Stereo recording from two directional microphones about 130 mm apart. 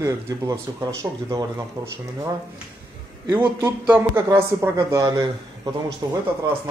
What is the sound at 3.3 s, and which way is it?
A man's voice, 15° right (ahead or behind).